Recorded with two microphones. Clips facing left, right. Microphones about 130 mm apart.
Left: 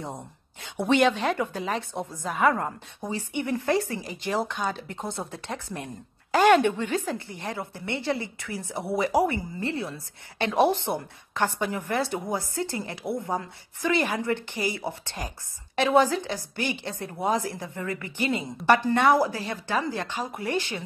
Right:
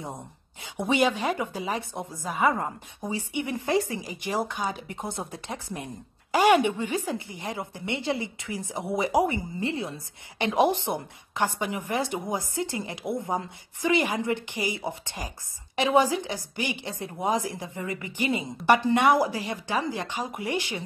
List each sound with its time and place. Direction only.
0.6 s a woman's voice: 10° right (ahead or behind)